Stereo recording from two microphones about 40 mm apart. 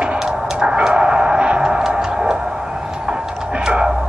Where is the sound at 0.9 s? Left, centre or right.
Right.